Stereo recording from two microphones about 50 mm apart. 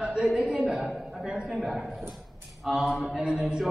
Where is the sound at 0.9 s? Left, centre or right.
Centre.